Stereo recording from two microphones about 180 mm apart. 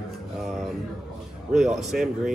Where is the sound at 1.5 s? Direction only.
Centre (ahead or behind).